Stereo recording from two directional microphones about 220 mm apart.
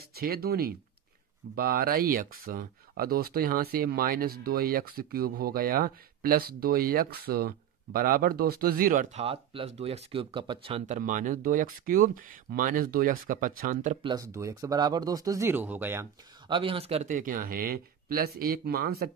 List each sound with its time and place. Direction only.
0.1 s speech: 45° right (ahead or behind)
14.0 s speech: 15° right (ahead or behind); by 19.0 s 45° right (ahead or behind)